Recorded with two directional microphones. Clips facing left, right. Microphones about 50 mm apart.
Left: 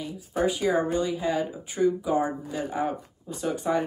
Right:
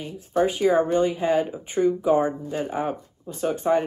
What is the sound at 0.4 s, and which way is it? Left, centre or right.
Speech, right.